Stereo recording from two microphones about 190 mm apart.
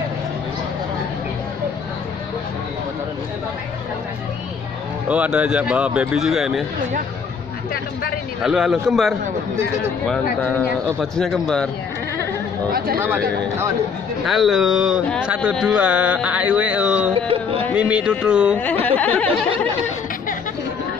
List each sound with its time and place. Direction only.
5.0 s speech: 5° right (ahead or behind)
8.4 s speech: centre (ahead or behind)
14.2 s speech: centre (ahead or behind)
17.1 s music: 30° right (ahead or behind)
17.7 s speech: 5° right (ahead or behind)
18.9 s a sound: 10° left (ahead or behind)